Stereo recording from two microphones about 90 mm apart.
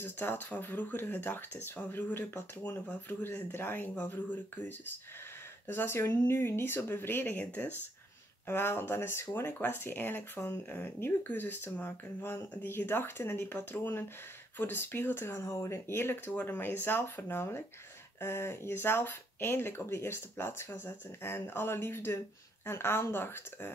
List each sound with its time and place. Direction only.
0.0 s speech: 25° left (ahead or behind)
5.7 s speech: 25° left (ahead or behind)